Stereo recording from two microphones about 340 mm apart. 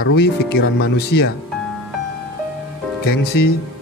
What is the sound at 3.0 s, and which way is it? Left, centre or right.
Speech, left.